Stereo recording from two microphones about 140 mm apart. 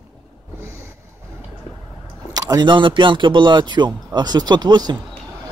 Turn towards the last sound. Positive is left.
turn(degrees=-30)  # may be behind; listen again after turning